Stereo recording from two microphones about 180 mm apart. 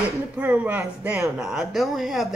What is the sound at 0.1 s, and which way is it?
Speech, 10° right (ahead or behind).